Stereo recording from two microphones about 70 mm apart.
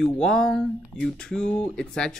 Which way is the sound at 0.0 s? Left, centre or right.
Centre.